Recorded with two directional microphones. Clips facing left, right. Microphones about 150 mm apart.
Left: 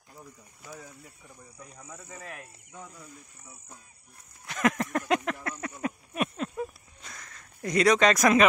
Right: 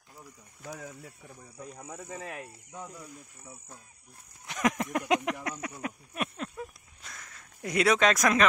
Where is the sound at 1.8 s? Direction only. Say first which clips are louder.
Right 4 dB; 30° right (ahead or behind).